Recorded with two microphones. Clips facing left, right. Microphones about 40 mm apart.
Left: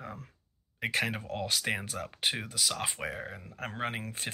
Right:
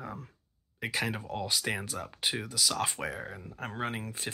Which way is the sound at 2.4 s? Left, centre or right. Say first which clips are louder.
Right 2 dB; left.